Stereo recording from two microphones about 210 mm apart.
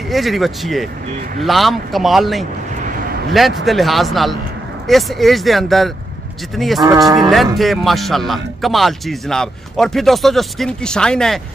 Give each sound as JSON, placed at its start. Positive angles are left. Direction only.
{"t": 0.1, "sound": "speech", "side_deg": 0}
{"t": 6.8, "sound": "cattle", "side_deg": -15}
{"t": 7.2, "sound": "speech", "side_deg": 0}